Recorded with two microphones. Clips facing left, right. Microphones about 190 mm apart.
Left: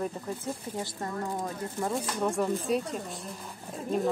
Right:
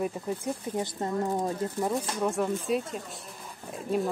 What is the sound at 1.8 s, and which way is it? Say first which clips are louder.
Speech: left 1 dB; 5° right (ahead or behind).